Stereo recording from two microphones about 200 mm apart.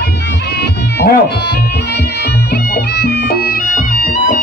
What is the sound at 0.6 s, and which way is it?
Music, 55° left (ahead or behind).